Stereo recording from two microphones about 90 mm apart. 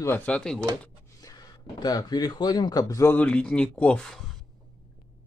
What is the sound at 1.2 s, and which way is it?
Speech, 45° left (ahead or behind).